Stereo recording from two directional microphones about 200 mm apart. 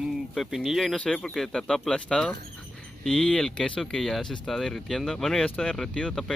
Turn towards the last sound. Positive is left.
turn(degrees=5)  # may be behind; listen again after turning